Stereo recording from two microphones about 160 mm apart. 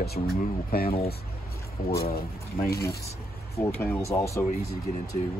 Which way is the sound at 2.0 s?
70° left (ahead or behind).